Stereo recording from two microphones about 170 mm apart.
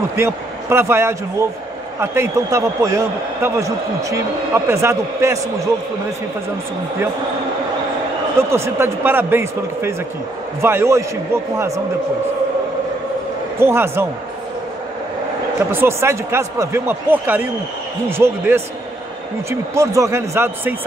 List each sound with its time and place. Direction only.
0.1 s a man's voice: 15° right (ahead or behind)
8.4 s a man's voice: 15° right (ahead or behind)
13.6 s a man's voice: 15° right (ahead or behind)
15.7 s a man's voice: 15° right (ahead or behind)
19.7 s a man's voice: 20° right (ahead or behind)